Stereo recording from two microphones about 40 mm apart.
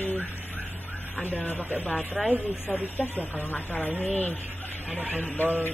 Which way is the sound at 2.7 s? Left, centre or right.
Centre.